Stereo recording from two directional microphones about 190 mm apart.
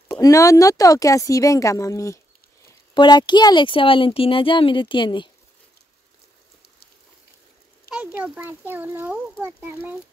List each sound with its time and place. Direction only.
0.1 s speech: 15° left (ahead or behind)
7.9 s a child's voice: 5° right (ahead or behind)